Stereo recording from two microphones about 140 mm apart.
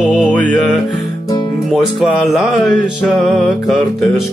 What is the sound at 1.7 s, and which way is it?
Music, centre (ahead or behind).